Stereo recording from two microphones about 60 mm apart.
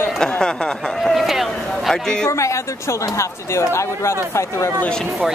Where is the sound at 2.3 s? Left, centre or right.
Left.